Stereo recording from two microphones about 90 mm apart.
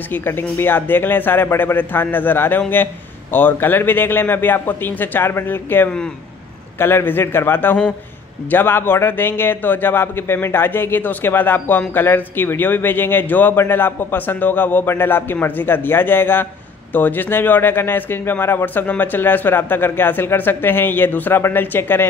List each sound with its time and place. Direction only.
0.1 s a man's voice: 25° left (ahead or behind)